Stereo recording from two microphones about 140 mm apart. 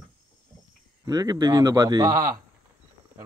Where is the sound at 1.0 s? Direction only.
25° right (ahead or behind).